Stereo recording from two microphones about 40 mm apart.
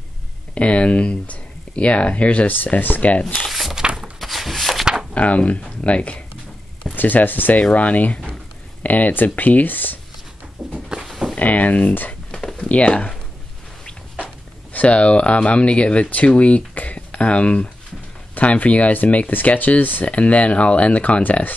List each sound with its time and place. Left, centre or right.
0.6 s speech: left
3.8 s a sound: centre
4.2 s a sound: centre
5.1 s speech: left
7.0 s speech: left
7.7 s speech: left
10.6 s a sound: centre
11.3 s speech: left
12.1 s a sound: left
12.5 s speech: left
14.1 s speech: left
20.1 s speech: left